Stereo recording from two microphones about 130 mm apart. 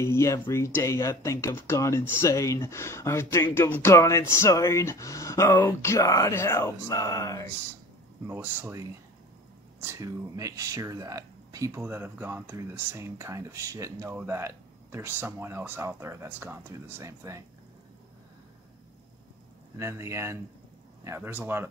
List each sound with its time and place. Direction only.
0.0 s speech: 20° left (ahead or behind)
8.3 s speech: 15° right (ahead or behind)
19.8 s speech: 20° right (ahead or behind)